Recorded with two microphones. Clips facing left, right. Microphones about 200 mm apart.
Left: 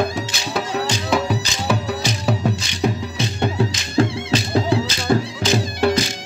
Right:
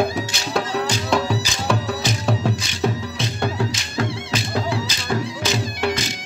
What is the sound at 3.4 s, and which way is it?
Music, 25° left (ahead or behind).